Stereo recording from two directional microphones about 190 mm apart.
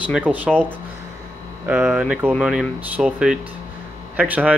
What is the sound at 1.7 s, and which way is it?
Speech, 10° right (ahead or behind).